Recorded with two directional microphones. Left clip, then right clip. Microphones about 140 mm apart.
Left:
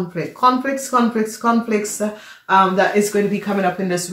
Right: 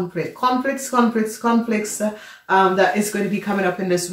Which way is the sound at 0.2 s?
35° left (ahead or behind).